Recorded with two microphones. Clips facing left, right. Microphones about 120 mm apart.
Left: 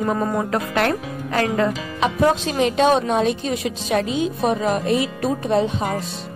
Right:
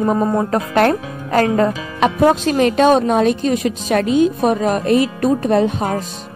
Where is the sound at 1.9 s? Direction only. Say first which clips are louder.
Right 5 dB; 55° right (ahead or behind).